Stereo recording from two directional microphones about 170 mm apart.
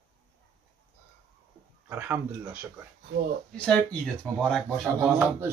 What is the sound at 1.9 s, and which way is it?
Speech, 10° right (ahead or behind).